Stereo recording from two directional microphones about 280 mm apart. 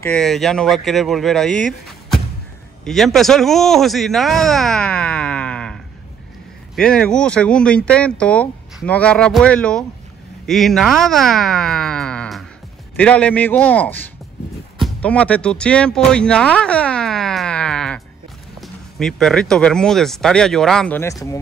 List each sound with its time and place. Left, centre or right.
0.0 s speech: centre
2.8 s speech: centre